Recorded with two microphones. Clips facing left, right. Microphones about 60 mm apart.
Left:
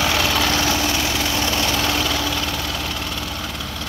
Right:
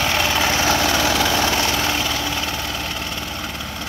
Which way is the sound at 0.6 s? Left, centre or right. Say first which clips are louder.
Right 2 dB; right.